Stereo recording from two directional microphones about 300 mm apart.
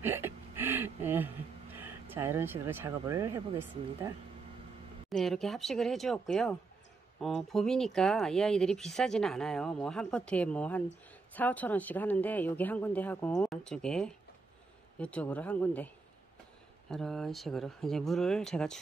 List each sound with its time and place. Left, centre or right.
0.0 s a sound: centre
5.1 s speech: centre
16.9 s speech: centre